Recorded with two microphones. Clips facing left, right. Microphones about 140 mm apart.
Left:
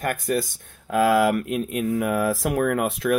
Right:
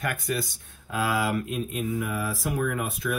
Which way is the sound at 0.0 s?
45° left (ahead or behind).